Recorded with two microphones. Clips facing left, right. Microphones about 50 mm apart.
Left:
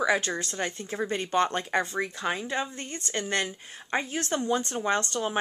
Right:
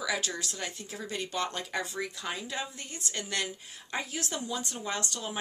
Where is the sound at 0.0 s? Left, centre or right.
Left.